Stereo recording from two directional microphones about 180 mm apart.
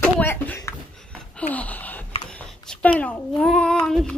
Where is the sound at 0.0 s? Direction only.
10° left (ahead or behind).